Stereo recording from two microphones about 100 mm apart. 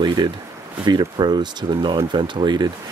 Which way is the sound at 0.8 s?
50° right (ahead or behind).